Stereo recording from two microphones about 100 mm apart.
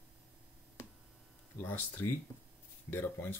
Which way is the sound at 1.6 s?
20° left (ahead or behind).